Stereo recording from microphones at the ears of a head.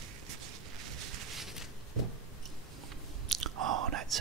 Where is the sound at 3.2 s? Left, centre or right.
Right.